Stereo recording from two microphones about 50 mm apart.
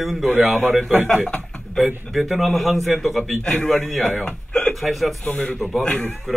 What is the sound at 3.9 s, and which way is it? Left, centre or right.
Speech, centre.